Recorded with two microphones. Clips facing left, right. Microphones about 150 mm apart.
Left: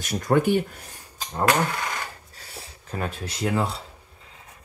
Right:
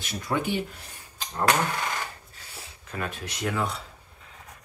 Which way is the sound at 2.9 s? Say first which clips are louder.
Left 3 dB; 30° left (ahead or behind).